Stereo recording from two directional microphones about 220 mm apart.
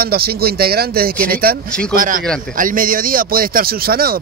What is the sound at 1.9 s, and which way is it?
Speech, 35° right (ahead or behind).